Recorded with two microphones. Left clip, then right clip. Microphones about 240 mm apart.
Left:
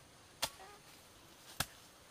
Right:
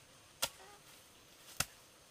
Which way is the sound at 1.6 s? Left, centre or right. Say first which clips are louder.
Right 1 dB; right.